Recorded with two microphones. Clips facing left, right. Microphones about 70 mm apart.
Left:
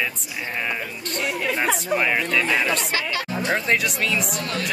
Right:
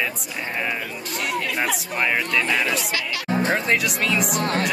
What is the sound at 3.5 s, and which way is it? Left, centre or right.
Speech, centre.